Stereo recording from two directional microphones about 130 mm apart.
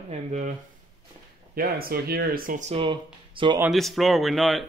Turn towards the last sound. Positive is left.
turn(degrees=0)  # may be behind; listen again after turning